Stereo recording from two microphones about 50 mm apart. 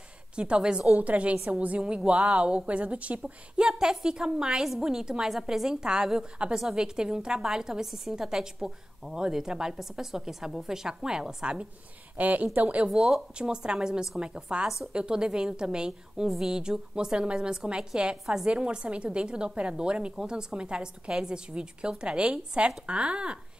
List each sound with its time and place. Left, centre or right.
0.4 s a woman's voice: centre
0.9 s a woman's voice: right
12.2 s a woman's voice: right
12.9 s a woman's voice: centre